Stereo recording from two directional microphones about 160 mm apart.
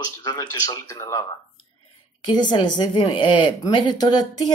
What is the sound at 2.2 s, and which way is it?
Speech, 30° left (ahead or behind).